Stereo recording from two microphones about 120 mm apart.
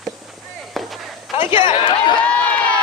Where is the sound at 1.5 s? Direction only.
45° left (ahead or behind).